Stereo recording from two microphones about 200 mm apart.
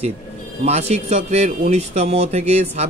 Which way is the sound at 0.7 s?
35° right (ahead or behind).